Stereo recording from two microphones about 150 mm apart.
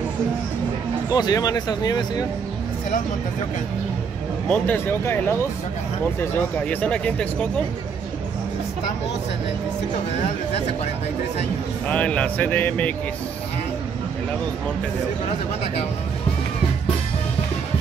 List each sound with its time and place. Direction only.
1.1 s speech: 25° left (ahead or behind)
4.5 s speech: 10° left (ahead or behind)
6.7 s speech: 10° left (ahead or behind)
11.9 s speech: 10° left (ahead or behind)